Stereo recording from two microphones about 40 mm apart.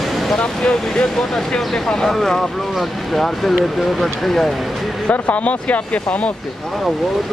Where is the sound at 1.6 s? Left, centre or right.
Centre.